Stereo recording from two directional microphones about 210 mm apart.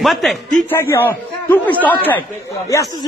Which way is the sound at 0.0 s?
Centre (ahead or behind).